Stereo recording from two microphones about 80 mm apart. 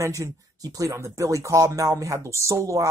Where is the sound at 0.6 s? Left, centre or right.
Right.